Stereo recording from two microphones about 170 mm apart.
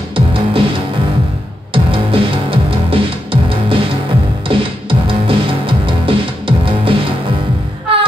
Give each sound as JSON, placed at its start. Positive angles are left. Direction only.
{"t": 0.1, "sound": "music", "side_deg": -30}
{"t": 1.7, "sound": "music", "side_deg": -30}
{"t": 7.9, "sound": "music", "side_deg": -30}